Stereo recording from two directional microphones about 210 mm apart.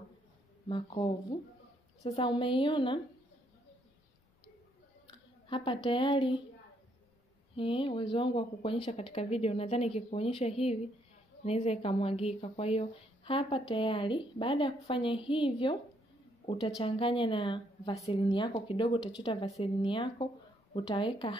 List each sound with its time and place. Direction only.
0.7 s speech: 25° left (ahead or behind)
5.5 s a woman's voice: 25° left (ahead or behind)
7.5 s speech: 25° left (ahead or behind)